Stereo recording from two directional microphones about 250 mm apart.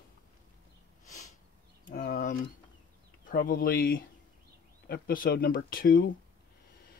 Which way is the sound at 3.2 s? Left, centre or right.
Left.